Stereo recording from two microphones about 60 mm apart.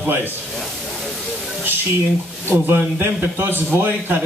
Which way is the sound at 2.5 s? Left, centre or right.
Right.